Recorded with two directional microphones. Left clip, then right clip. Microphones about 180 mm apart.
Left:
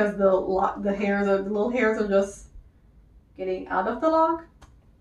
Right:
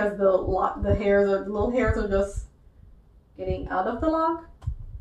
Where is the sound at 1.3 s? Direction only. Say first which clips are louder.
Even; centre (ahead or behind).